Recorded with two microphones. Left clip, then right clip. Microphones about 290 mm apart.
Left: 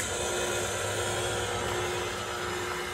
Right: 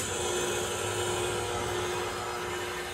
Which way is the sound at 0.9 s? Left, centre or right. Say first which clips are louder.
Even; centre.